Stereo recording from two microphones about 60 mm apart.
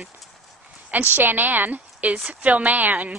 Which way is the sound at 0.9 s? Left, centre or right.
Right.